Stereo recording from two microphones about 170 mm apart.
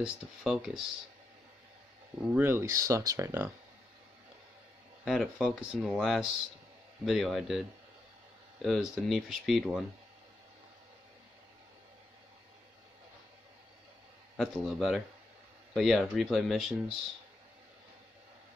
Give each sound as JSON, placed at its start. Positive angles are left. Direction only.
{"t": 0.0, "sound": "speech", "side_deg": 0}
{"t": 2.1, "sound": "speech", "side_deg": -10}
{"t": 5.0, "sound": "speech", "side_deg": 0}
{"t": 8.6, "sound": "speech", "side_deg": 0}
{"t": 14.3, "sound": "speech", "side_deg": 0}